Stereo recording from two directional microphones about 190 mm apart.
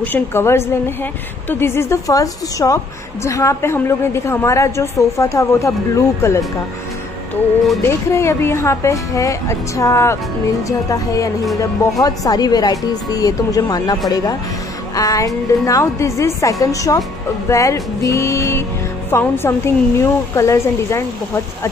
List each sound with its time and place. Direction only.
0.0 s a woman's voice: 10° left (ahead or behind)
8.1 s a woman's voice: 15° left (ahead or behind)
11.8 s a woman's voice: 20° left (ahead or behind)